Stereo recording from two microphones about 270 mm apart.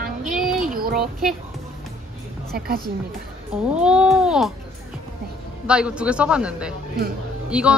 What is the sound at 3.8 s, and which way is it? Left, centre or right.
Speech, centre.